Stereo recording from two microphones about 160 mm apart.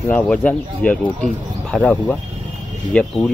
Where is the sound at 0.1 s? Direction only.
10° left (ahead or behind).